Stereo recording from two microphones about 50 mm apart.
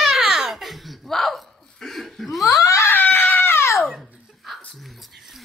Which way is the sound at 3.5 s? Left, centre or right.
Left.